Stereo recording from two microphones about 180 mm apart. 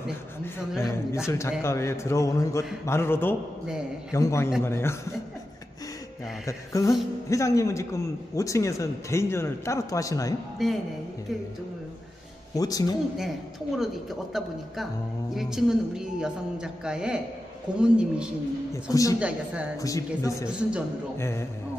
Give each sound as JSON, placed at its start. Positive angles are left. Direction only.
{"t": 0.7, "sound": "a man's voice", "side_deg": 15}
{"t": 6.4, "sound": "a man's voice", "side_deg": 20}
{"t": 10.6, "sound": "a woman's voice", "side_deg": 0}
{"t": 12.5, "sound": "speech", "side_deg": 20}
{"t": 15.3, "sound": "a woman's voice", "side_deg": -5}
{"t": 18.7, "sound": "speech", "side_deg": 20}
{"t": 19.1, "sound": "speech", "side_deg": -5}
{"t": 19.8, "sound": "a man's voice", "side_deg": 20}
{"t": 20.4, "sound": "a woman's voice", "side_deg": -5}
{"t": 21.2, "sound": "a man's voice", "side_deg": 15}